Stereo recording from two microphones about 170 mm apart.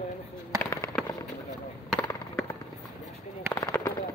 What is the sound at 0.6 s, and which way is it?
Fireworks, 15° left (ahead or behind).